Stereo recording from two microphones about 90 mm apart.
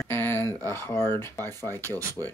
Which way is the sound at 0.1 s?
25° left (ahead or behind).